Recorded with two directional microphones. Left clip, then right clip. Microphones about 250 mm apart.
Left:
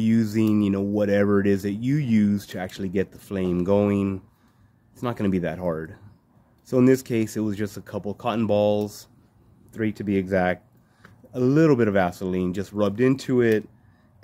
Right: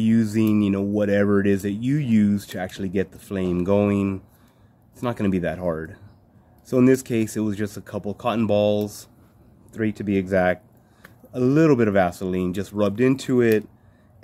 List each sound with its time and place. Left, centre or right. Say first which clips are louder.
0.0 s speech: right 1 dB; centre